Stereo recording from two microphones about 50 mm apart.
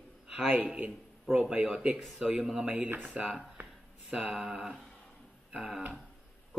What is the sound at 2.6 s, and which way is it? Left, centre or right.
Speech, right.